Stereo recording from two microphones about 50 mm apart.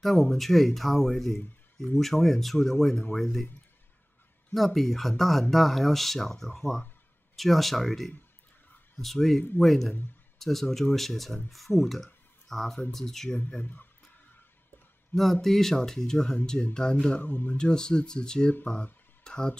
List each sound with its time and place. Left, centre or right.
0.0 s speech: centre
4.6 s speech: centre
13.6 s speech: left
15.4 s speech: centre
17.2 s speech: left
17.6 s speech: centre
19.2 s a sound: centre